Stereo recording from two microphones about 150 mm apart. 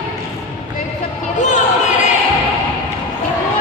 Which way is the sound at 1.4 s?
55° left (ahead or behind).